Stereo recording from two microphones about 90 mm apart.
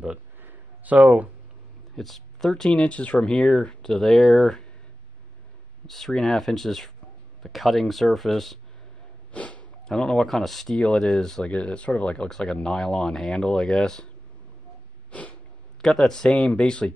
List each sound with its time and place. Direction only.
0.4 s a sound: 20° right (ahead or behind)
2.0 s speech: centre (ahead or behind)
5.9 s speech: 5° left (ahead or behind)
9.3 s snort: 15° left (ahead or behind)
9.8 s speech: 5° left (ahead or behind)
15.0 s a sound: 15° left (ahead or behind)
15.8 s speech: 5° left (ahead or behind)